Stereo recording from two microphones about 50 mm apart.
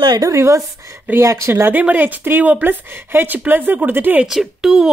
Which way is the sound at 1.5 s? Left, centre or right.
Right.